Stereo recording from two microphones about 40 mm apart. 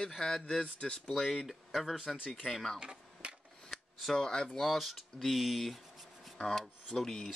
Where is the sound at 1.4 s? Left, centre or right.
Centre.